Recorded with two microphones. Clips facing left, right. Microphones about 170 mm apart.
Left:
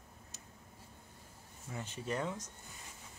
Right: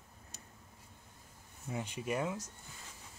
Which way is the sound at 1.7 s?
15° right (ahead or behind).